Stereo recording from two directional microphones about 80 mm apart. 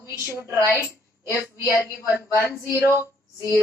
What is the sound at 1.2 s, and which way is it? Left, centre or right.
Speech, left.